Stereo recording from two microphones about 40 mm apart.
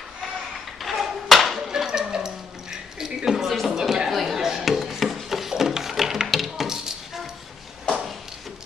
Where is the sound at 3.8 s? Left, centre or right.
Centre.